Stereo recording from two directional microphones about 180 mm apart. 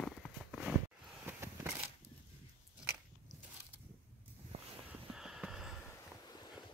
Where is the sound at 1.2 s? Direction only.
15° right (ahead or behind).